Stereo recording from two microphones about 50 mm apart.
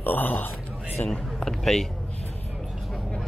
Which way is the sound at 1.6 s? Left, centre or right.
Centre.